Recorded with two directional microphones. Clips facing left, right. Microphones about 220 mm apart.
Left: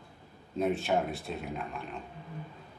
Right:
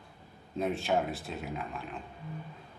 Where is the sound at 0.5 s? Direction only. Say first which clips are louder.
Left 1 dB; centre (ahead or behind).